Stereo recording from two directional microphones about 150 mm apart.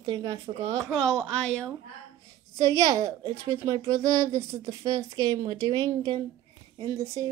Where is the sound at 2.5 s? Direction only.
20° right (ahead or behind).